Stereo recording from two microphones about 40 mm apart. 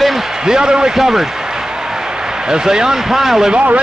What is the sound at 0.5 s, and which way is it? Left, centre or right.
Speech, centre.